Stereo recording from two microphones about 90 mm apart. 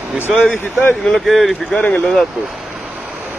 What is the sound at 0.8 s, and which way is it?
Speech, 10° left (ahead or behind).